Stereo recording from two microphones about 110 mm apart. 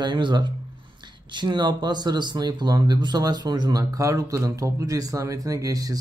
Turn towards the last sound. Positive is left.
turn(degrees=-35)  # may be behind; listen again after turning